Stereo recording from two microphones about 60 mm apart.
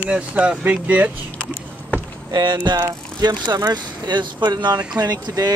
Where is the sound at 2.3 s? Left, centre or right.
Right.